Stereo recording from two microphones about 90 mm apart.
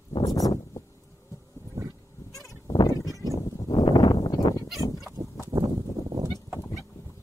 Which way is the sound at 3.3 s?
40° left (ahead or behind).